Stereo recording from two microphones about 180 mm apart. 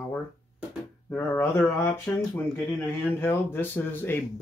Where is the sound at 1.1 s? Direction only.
10° left (ahead or behind).